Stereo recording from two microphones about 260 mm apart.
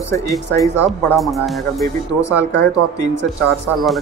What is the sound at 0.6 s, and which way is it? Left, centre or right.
Speech, centre.